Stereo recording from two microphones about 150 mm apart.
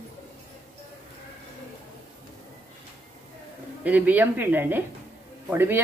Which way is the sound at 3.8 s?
10° right (ahead or behind).